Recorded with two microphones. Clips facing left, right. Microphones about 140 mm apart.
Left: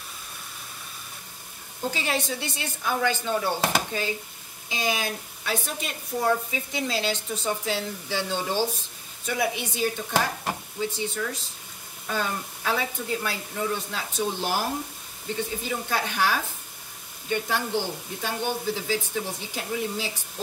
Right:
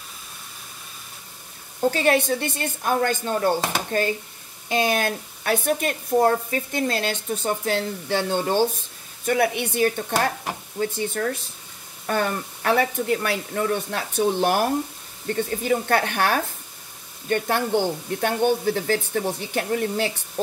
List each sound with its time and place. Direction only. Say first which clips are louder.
1.9 s a woman's voice: right 8 dB; 55° right (ahead or behind)